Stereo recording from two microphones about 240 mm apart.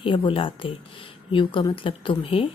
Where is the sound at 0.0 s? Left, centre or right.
Left.